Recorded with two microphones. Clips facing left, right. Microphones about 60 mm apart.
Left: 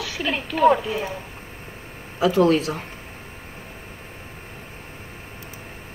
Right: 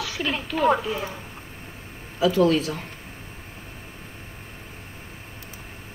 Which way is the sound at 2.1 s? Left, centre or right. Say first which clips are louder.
Left 2 dB; left.